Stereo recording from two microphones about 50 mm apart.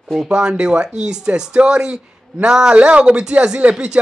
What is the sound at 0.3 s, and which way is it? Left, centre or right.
Speech, centre.